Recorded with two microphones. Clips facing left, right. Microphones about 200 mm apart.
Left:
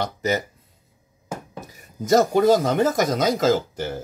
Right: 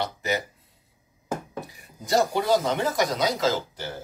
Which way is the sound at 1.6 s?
45° left (ahead or behind).